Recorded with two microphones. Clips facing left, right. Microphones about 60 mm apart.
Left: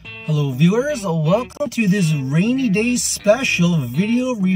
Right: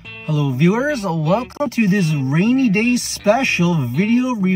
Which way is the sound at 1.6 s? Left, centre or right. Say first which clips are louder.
Right 1 dB; right.